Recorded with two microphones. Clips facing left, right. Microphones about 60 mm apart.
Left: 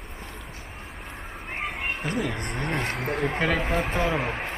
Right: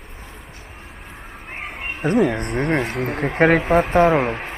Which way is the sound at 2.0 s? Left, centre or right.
Right.